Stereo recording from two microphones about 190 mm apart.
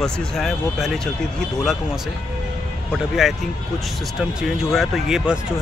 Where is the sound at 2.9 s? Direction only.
Centre (ahead or behind).